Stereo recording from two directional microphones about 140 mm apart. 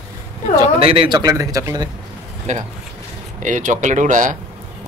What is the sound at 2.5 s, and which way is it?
Speech, 55° right (ahead or behind).